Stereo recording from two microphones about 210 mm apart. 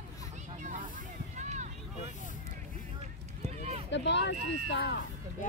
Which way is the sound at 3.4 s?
30° right (ahead or behind).